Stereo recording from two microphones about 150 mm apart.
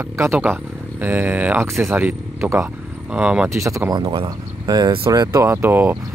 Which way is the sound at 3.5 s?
20° right (ahead or behind).